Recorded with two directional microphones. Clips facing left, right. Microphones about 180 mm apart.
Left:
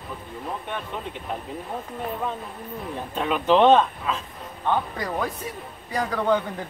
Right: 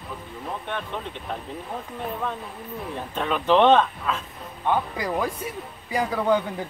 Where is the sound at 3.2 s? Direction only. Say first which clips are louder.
Left 1 dB; 5° left (ahead or behind).